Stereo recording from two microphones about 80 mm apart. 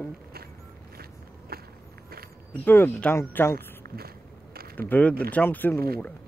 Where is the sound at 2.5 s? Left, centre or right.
Left.